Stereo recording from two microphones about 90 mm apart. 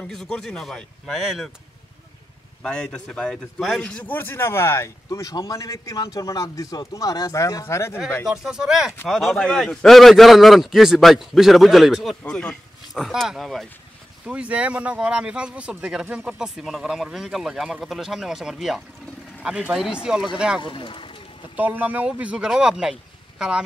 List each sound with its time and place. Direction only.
0.0 s a man's voice: 5° left (ahead or behind)
2.6 s a man's voice: 10° left (ahead or behind)
3.8 s speech: 15° left (ahead or behind)
8.3 s a man's voice: 5° right (ahead or behind)
12.2 s a man's voice: 15° left (ahead or behind)
12.9 s a man's voice: centre (ahead or behind)
14.2 s a man's voice: 15° right (ahead or behind)
20.6 s speech: 65° left (ahead or behind)
21.5 s speech: 20° right (ahead or behind)